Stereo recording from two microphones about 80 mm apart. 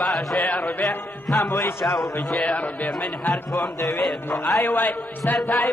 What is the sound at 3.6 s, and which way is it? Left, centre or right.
Music, left.